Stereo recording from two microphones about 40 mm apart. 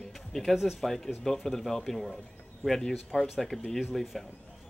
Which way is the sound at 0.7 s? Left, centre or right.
Centre.